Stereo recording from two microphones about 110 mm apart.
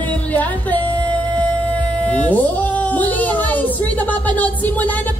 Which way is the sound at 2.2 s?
15° left (ahead or behind).